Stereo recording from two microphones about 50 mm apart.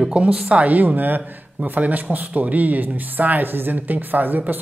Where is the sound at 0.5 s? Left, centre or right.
Right.